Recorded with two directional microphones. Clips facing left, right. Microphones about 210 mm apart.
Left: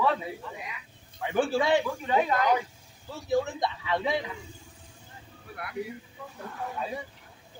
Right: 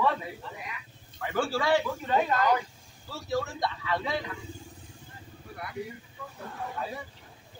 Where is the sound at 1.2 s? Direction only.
20° left (ahead or behind).